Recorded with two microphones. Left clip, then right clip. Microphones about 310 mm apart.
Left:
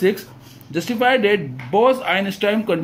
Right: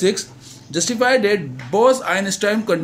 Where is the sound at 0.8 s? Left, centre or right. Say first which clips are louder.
Even; right.